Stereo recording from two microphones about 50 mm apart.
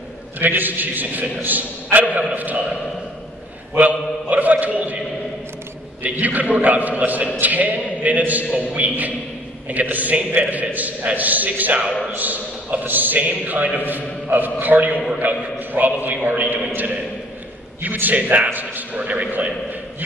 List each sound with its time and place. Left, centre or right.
0.4 s a man's voice: right
4.3 s a man's voice: right
6.0 s a man's voice: right
18.0 s a man's voice: right